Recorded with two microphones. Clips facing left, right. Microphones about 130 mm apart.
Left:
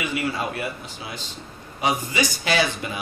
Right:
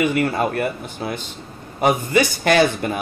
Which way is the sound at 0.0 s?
55° right (ahead or behind).